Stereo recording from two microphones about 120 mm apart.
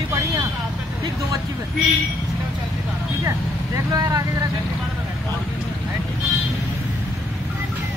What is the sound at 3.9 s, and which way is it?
Speech, 30° right (ahead or behind).